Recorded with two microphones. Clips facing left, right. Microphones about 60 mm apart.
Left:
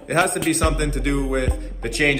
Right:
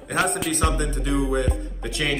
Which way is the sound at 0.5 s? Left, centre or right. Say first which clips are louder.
Left 3 dB; left.